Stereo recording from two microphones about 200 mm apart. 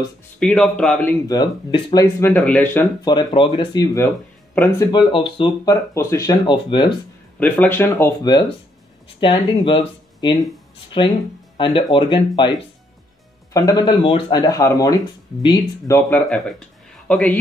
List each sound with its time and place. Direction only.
0.4 s speech: 5° left (ahead or behind)
1.2 s speech: 20° left (ahead or behind)
7.3 s speech: 10° left (ahead or behind)
11.5 s speech: 25° left (ahead or behind); by 17.4 s 5° left (ahead or behind)